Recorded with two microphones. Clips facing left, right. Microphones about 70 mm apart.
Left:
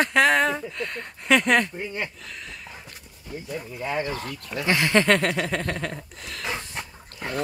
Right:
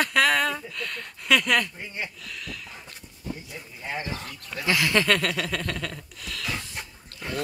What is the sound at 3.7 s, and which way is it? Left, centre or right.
Speech, left.